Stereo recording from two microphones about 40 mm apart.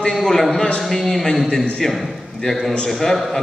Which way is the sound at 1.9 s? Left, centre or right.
Centre.